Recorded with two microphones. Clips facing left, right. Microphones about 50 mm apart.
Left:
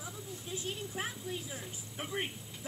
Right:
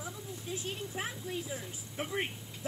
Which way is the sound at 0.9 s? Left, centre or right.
Centre.